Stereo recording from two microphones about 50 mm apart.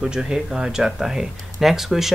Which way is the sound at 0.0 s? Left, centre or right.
Centre.